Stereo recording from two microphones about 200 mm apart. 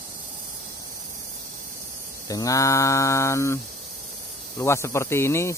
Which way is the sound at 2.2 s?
15° left (ahead or behind).